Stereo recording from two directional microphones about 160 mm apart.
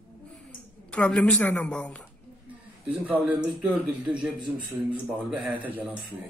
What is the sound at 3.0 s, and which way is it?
Speech, 10° right (ahead or behind).